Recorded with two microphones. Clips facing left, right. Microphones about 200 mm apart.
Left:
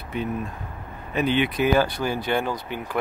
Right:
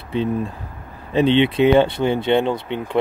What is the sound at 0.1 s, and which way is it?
Speech, 30° right (ahead or behind).